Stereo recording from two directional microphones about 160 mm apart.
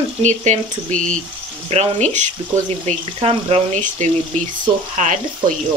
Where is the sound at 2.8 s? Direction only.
40° right (ahead or behind).